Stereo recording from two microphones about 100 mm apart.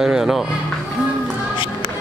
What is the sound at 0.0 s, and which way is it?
Music, 5° right (ahead or behind).